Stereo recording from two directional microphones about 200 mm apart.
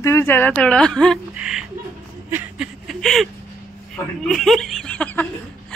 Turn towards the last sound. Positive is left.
turn(degrees=5)  # may be behind; listen again after turning